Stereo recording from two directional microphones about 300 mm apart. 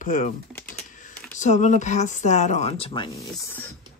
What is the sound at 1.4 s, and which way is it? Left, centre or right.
Speech, left.